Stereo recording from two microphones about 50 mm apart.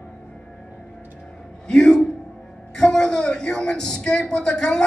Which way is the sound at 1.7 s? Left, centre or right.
Centre.